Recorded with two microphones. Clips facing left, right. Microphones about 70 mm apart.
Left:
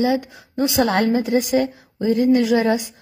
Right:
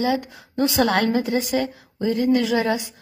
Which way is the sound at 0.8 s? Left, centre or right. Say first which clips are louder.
Left 2 dB; left.